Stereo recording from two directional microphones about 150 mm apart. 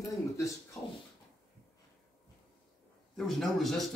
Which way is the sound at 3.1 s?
Centre (ahead or behind).